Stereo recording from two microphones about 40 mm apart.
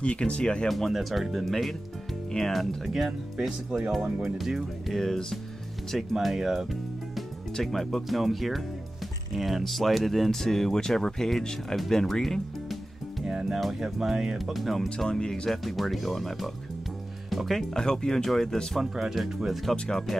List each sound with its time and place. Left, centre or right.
0.0 s speech: left
0.7 s speech: centre
3.1 s speech: centre
4.9 s speech: centre
6.1 s speech: centre
13.3 s music: centre
13.7 s speech: centre
15.0 s speech: centre
15.6 s speech: centre
17.5 s speech: centre
18.8 s speech: centre
19.7 s speech: centre